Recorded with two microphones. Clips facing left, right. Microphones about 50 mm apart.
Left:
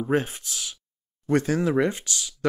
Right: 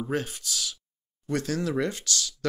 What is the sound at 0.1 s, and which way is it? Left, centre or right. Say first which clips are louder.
Speech: left 7 dB; left.